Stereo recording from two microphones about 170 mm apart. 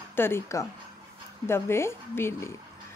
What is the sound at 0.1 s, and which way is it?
A woman's voice, 15° left (ahead or behind).